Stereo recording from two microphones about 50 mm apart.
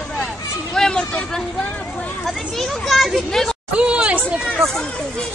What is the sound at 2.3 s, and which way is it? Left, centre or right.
A child's voice, centre.